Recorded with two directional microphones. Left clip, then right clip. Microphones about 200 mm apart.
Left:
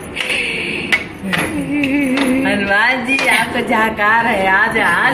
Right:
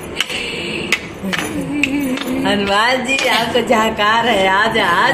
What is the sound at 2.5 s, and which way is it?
A woman's voice, 15° right (ahead or behind).